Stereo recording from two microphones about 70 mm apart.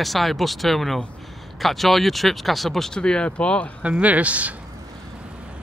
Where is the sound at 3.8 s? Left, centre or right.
Centre.